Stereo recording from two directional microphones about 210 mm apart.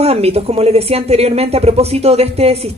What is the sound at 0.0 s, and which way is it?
Speech, 30° right (ahead or behind).